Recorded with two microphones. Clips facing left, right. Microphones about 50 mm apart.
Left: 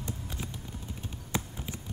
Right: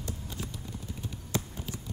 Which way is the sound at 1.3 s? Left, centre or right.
Centre.